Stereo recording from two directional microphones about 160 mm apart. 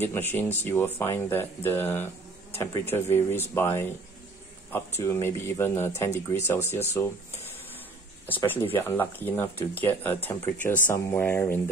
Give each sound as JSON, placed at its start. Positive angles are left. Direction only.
{"t": 0.0, "sound": "speech", "side_deg": 10}
{"t": 5.0, "sound": "speech", "side_deg": 15}
{"t": 8.4, "sound": "speech", "side_deg": 15}